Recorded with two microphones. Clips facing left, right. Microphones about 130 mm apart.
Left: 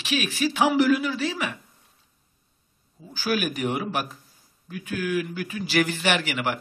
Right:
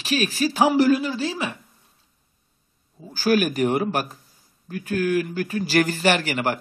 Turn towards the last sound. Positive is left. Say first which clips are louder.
# right 3 dB
turn(degrees=-40)  # may be behind; listen again after turning